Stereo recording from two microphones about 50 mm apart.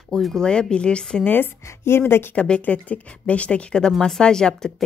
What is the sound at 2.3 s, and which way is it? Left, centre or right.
Speech, centre.